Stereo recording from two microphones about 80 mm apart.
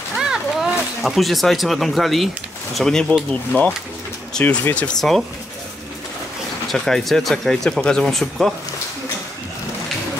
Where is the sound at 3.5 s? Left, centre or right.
Left.